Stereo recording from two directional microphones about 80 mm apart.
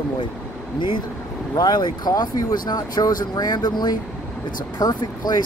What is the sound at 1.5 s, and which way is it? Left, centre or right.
Speech, left.